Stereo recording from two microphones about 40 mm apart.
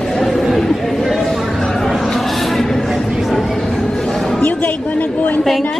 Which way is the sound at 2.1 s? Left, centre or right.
Centre.